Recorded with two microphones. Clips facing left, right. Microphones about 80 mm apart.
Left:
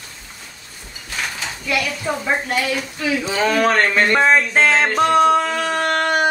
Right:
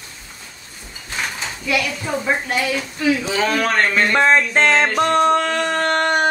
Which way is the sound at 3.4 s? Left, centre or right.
Centre.